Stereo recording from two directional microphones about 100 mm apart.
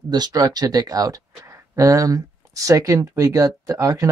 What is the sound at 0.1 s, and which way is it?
Speech, 40° right (ahead or behind).